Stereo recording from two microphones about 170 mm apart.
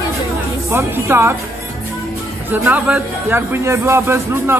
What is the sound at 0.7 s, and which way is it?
Speech, 15° right (ahead or behind).